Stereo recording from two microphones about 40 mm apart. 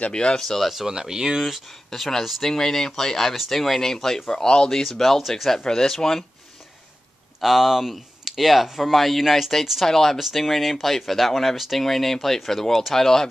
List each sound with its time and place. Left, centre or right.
0.1 s speech: left
0.4 s speech: centre
0.8 s speech: centre
1.9 s speech: centre
7.3 s speech: centre
10.1 s speech: centre